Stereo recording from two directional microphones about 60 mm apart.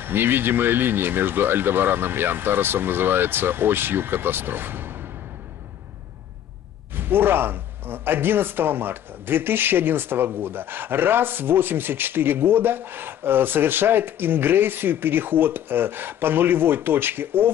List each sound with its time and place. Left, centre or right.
0.0 s speech: right
7.0 s speech: right